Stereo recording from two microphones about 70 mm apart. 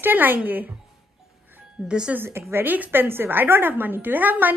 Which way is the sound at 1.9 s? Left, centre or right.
Centre.